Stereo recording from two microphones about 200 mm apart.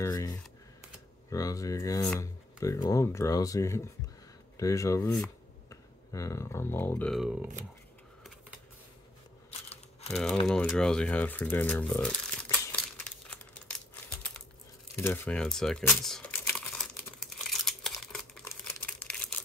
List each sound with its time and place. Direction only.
0.0 s speech: 15° left (ahead or behind); by 7.5 s 5° right (ahead or behind)
9.5 s a sound: 30° left (ahead or behind)
10.4 s speech: 5° left (ahead or behind)
12.7 s crumpling: 5° left (ahead or behind)
15.0 s typing: 10° left (ahead or behind)